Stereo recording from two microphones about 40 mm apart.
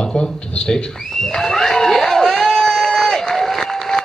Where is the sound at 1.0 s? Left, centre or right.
Centre.